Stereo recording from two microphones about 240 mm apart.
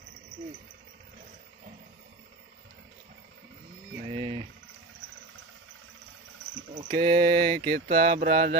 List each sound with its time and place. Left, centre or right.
4.0 s a sound: right
6.7 s speech: right
8.0 s speech: right